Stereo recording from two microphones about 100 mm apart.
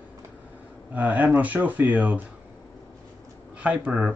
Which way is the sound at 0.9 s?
15° right (ahead or behind).